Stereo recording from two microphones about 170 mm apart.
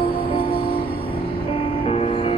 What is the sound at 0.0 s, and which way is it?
Music, 60° left (ahead or behind).